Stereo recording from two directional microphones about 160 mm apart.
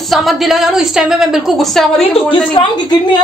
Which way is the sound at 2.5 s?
30° left (ahead or behind).